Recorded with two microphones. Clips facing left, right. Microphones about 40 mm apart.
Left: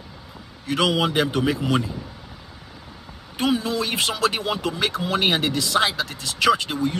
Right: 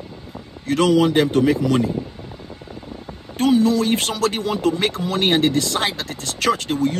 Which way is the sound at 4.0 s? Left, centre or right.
Left.